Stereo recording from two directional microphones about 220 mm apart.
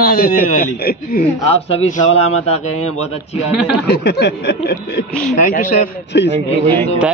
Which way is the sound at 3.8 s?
45° left (ahead or behind).